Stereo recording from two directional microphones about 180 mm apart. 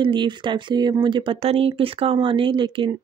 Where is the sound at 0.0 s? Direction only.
25° right (ahead or behind).